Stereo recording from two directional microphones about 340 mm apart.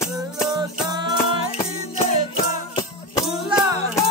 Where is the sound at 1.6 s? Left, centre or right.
Centre.